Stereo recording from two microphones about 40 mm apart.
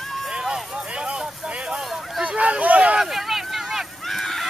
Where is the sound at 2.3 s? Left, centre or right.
Right.